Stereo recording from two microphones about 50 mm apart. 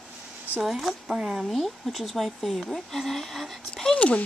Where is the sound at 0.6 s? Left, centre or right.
Centre.